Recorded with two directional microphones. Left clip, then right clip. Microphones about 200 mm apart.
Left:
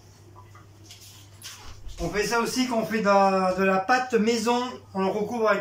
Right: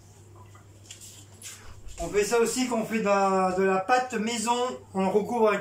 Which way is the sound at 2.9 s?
10° right (ahead or behind).